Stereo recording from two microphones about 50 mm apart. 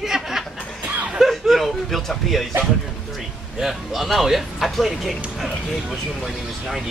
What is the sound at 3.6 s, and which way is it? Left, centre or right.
Speech, centre.